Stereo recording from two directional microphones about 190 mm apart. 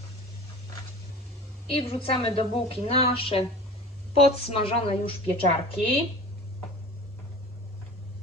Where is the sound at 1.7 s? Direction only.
30° left (ahead or behind).